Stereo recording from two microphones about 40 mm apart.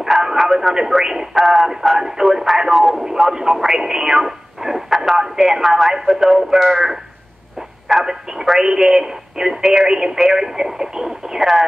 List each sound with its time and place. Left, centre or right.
0.0 s a sound: centre
0.4 s speech: centre
1.4 s synthetic singing: centre
2.0 s speech: centre
5.4 s synthetic singing: centre
5.9 s speech: centre
6.2 s speech: centre
8.0 s speech: centre
9.8 s speech: centre